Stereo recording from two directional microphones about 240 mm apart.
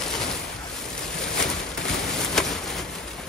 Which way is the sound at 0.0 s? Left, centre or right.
Centre.